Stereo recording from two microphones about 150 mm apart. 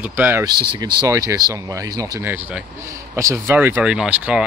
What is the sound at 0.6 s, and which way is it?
Speech, 30° right (ahead or behind).